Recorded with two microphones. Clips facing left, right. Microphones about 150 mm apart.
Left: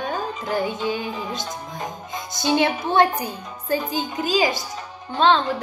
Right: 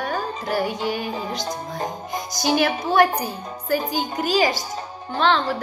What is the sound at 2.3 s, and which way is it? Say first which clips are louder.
A woman's voice: even; 25° left (ahead or behind).